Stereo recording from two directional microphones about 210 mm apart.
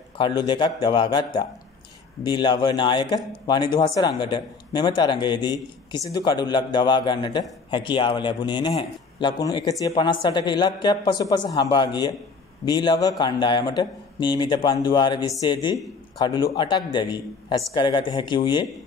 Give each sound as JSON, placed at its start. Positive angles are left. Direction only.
{"t": 0.2, "sound": "a man's voice", "side_deg": 20}